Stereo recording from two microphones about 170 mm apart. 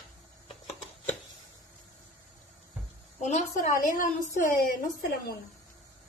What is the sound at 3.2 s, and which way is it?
Speech, 45° left (ahead or behind).